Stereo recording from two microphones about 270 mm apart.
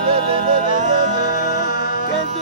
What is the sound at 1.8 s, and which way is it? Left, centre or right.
Music, left.